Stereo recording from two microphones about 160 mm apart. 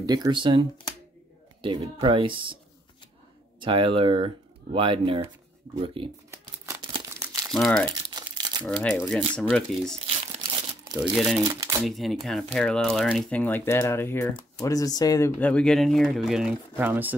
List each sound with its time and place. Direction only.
0.0 s speech: 25° right (ahead or behind)
3.5 s speech: 30° right (ahead or behind)
6.3 s a sound: 15° right (ahead or behind)
7.2 s crumpling: 20° right (ahead or behind)
7.5 s speech: centre (ahead or behind)
8.1 s crumpling: 25° right (ahead or behind)
8.6 s speech: 5° left (ahead or behind)
10.0 s crumpling: 40° right (ahead or behind)
10.4 s crumpling: 25° right (ahead or behind)
11.0 s speech: centre (ahead or behind)
11.4 s speech: 20° right (ahead or behind)
11.8 s speech: centre (ahead or behind)
16.7 s speech: 10° right (ahead or behind)